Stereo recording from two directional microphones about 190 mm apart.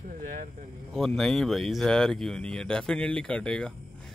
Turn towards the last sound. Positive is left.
turn(degrees=5)  # may be behind; listen again after turning